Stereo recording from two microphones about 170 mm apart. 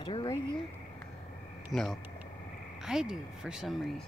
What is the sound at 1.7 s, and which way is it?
Speech, centre (ahead or behind).